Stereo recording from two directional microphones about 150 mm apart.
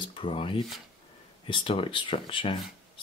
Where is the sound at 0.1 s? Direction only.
35° left (ahead or behind).